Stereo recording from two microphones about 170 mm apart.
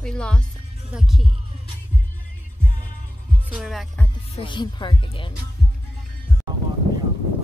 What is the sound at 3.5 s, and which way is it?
Speech, centre (ahead or behind).